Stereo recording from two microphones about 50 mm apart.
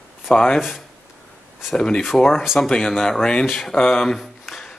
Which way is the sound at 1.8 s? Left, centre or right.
Centre.